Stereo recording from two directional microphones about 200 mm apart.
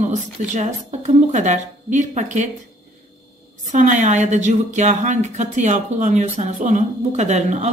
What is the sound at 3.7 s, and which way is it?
A woman's voice, 40° right (ahead or behind).